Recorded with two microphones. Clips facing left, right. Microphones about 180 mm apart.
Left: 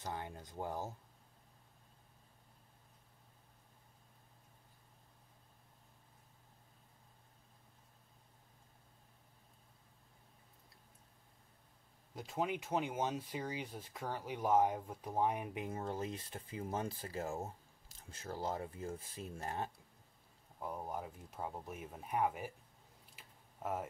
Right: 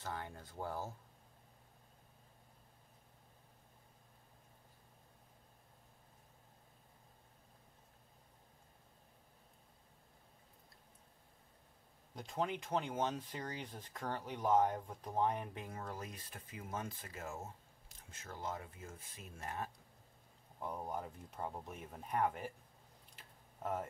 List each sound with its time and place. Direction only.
0.0 s speech: 20° left (ahead or behind)
12.2 s speech: 5° left (ahead or behind); by 19.7 s 30° left (ahead or behind)
20.5 s speech: 5° left (ahead or behind)
23.1 s a sound: 10° left (ahead or behind)